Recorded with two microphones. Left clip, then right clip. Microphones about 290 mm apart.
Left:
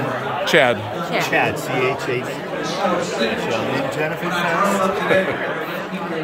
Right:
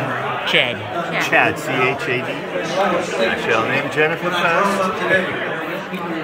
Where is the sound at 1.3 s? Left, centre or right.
Centre.